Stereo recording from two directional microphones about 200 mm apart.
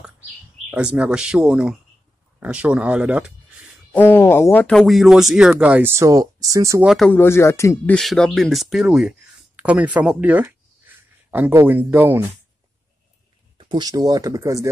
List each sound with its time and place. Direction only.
0.7 s speech: 5° right (ahead or behind)
3.9 s speech: 10° left (ahead or behind); by 6.9 s 15° right (ahead or behind)
6.9 s speech: 5° left (ahead or behind)
13.6 s speech: 20° right (ahead or behind)